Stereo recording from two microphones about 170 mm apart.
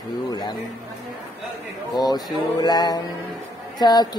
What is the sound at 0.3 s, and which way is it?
Speech, 25° left (ahead or behind).